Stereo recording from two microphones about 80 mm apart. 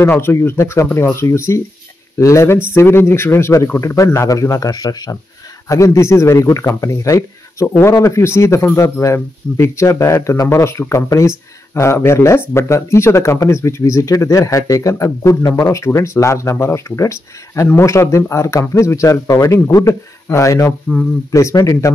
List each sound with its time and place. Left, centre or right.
0.0 s speech: left
5.9 s speech: left
7.6 s speech: left
7.9 s speech: left